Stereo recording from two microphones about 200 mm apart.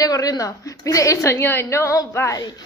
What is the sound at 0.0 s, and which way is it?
A woman's voice, 20° left (ahead or behind).